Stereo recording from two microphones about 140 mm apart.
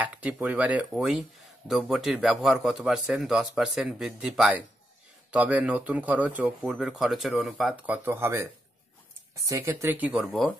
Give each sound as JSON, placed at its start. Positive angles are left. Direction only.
{"t": 0.0, "sound": "a man's voice", "side_deg": -10}